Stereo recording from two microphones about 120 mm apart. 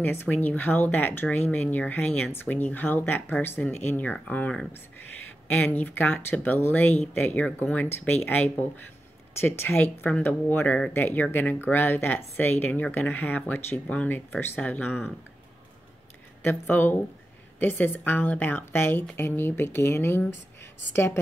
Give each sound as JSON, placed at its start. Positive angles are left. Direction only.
{"t": 0.0, "sound": "speech", "side_deg": 15}
{"t": 16.4, "sound": "speech", "side_deg": 15}